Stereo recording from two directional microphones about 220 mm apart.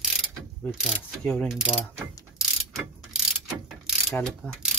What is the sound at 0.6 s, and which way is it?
Mechanisms, centre (ahead or behind).